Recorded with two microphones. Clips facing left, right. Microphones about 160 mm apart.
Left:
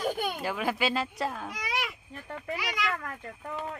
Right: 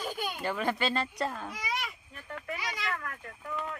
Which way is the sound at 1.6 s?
70° left (ahead or behind).